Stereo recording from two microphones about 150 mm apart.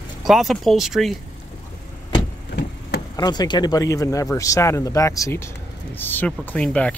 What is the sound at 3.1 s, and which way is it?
Speech, 25° left (ahead or behind).